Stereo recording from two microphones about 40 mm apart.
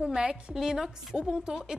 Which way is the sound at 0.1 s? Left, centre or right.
Centre.